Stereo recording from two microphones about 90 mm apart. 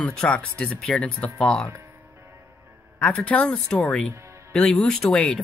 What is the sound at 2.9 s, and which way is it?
Speech, 15° left (ahead or behind).